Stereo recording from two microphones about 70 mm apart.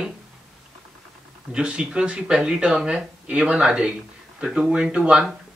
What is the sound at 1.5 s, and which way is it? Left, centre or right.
Speech, centre.